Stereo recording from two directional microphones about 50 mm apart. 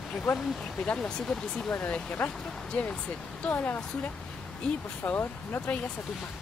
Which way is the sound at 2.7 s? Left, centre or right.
Left.